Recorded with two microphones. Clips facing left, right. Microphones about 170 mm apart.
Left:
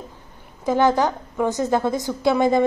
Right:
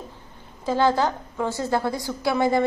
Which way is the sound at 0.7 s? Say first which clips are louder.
Left 3 dB; 15° left (ahead or behind).